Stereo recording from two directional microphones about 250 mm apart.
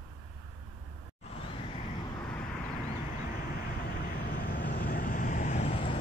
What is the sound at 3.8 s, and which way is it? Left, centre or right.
Vehicle, left.